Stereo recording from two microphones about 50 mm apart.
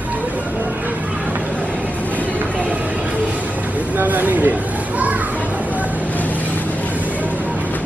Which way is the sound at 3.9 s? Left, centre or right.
Right.